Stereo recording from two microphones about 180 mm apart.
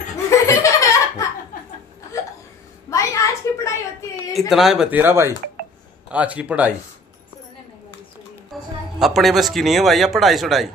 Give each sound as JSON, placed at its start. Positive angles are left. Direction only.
{"t": 0.3, "sound": "laughter", "side_deg": 15}
{"t": 2.9, "sound": "a sound", "side_deg": 15}
{"t": 4.5, "sound": "speech", "side_deg": 0}
{"t": 8.5, "sound": "music", "side_deg": 0}
{"t": 9.0, "sound": "a man's voice", "side_deg": 0}